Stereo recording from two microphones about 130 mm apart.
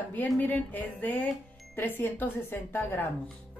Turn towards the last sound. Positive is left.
turn(degrees=15)  # may be behind; listen again after turning